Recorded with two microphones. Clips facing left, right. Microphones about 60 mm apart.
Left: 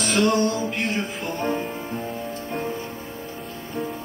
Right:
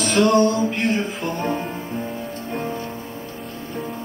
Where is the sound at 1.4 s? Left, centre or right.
Centre.